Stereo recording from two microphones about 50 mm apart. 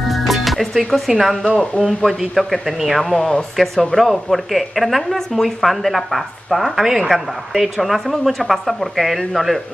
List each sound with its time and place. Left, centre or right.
0.1 s music: centre
0.9 s speech: centre